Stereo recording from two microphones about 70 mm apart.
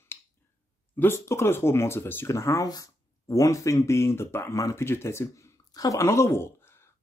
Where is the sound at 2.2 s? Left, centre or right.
Left.